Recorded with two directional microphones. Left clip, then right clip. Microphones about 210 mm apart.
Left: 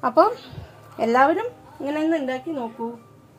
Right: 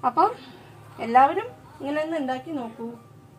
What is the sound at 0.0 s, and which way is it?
Speech, 50° left (ahead or behind).